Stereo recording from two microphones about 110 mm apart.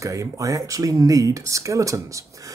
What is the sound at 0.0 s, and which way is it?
Speech, 30° right (ahead or behind).